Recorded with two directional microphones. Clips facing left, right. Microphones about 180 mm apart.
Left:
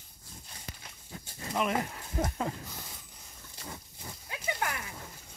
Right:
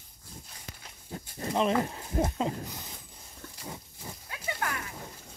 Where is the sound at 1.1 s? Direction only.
35° right (ahead or behind).